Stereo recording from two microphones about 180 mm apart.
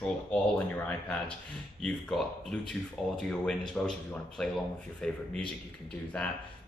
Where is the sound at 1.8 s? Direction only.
Centre (ahead or behind).